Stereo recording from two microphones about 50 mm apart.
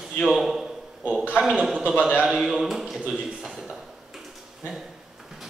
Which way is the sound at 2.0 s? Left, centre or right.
Centre.